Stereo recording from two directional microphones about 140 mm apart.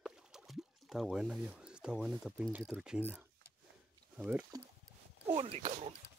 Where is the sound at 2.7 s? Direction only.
5° right (ahead or behind).